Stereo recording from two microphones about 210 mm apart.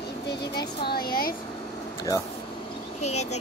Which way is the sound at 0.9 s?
45° left (ahead or behind).